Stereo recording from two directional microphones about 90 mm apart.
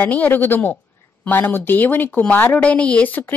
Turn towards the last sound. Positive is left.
turn(degrees=20)  # may be behind; listen again after turning